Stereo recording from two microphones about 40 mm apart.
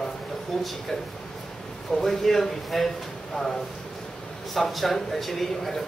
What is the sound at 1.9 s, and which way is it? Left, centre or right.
Speech, centre.